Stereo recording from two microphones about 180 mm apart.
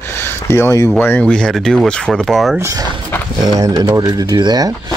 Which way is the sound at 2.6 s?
15° right (ahead or behind).